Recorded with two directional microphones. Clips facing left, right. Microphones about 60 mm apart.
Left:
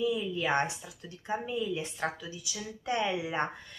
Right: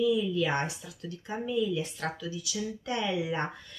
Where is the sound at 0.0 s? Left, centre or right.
Left.